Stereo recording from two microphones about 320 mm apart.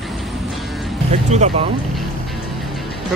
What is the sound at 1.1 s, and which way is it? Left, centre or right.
Speech, right.